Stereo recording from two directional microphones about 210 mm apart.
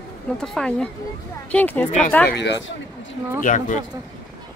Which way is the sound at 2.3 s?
55° left (ahead or behind).